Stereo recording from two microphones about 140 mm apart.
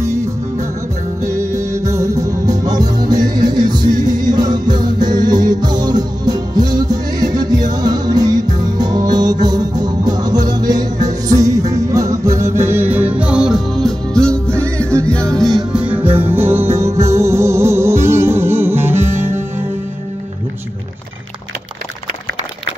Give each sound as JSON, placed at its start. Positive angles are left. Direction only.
{"t": 0.0, "sound": "music", "side_deg": -20}
{"t": 15.7, "sound": "music", "side_deg": -10}